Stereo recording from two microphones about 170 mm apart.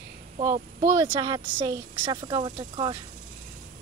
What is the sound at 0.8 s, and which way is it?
Speech, 15° right (ahead or behind).